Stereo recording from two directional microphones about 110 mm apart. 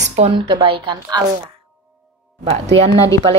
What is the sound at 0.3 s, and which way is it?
Speech, 55° right (ahead or behind).